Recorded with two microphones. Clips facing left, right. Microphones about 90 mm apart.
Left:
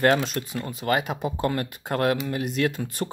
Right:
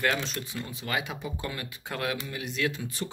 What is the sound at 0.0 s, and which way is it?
Speech, 45° left (ahead or behind).